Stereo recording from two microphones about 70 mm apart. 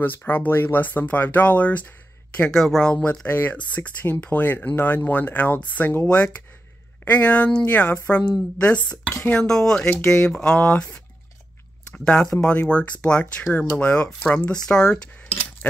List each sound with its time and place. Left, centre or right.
0.0 s speech: left
2.5 s speech: centre
3.3 s speech: left
6.0 s speech: centre
11.9 s speech: centre